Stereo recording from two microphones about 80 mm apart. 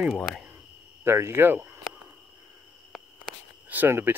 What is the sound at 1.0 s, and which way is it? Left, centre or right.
Speech, right.